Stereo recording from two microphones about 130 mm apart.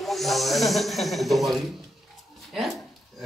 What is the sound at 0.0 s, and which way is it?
Speech, centre (ahead or behind).